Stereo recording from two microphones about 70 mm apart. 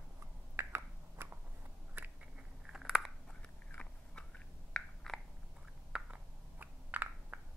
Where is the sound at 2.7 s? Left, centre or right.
Centre.